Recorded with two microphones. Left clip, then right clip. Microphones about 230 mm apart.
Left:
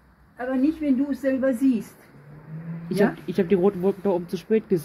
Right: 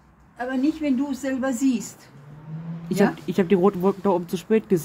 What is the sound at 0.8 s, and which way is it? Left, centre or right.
Speech, left.